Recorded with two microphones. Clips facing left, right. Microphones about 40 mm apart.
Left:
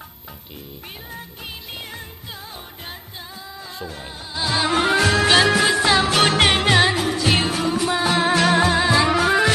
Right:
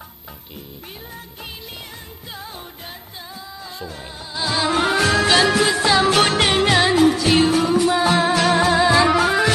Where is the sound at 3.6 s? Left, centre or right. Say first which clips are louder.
Left 1 dB; centre.